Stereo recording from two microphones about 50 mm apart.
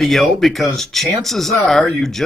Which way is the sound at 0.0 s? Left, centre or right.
Centre.